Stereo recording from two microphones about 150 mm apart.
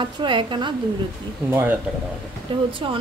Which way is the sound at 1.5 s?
15° right (ahead or behind).